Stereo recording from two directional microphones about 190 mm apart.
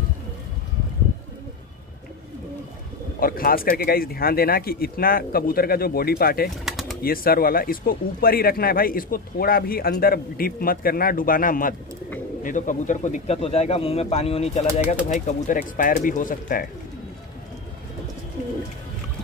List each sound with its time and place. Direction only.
3.2 s speech: 50° left (ahead or behind)
6.6 s bird: centre (ahead or behind)
7.0 s speech: 50° left (ahead or behind)